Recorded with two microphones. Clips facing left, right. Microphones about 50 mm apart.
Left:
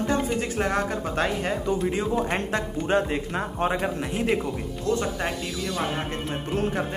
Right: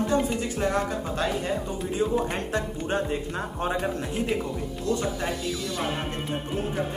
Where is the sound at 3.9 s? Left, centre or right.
Left.